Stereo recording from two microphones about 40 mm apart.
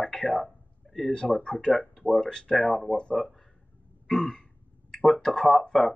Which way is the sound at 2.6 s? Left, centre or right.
Centre.